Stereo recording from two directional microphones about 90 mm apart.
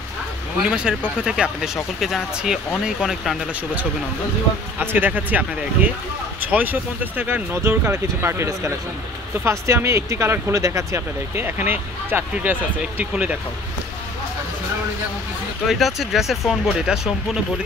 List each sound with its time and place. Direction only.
0.6 s speech: 10° right (ahead or behind)
4.7 s speech: 20° right (ahead or behind)
11.4 s speech: 20° right (ahead or behind)
15.7 s speech: centre (ahead or behind)